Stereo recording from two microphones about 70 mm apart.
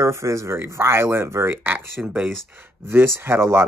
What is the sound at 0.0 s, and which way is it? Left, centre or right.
Speech, right.